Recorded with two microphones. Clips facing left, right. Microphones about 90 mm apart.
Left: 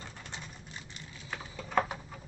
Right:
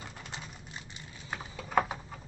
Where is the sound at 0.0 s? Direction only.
5° right (ahead or behind).